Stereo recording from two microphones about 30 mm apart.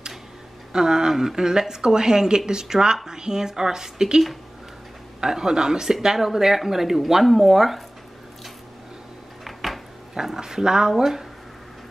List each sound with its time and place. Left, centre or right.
0.7 s speech: right
5.2 s speech: right
6.1 s speech: centre
9.4 s a sound: centre
10.4 s speech: centre